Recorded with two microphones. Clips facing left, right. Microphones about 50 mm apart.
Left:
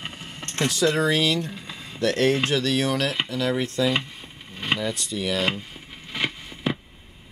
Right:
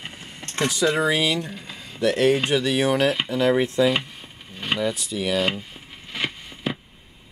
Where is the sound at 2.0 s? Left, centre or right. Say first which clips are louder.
Right 2 dB; centre.